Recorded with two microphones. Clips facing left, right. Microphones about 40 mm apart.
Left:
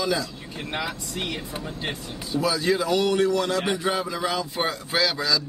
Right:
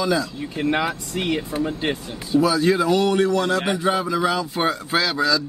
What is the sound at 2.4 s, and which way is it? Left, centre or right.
Speech, centre.